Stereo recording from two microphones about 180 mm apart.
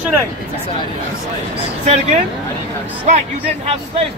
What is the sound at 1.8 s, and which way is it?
A man's voice, 45° right (ahead or behind).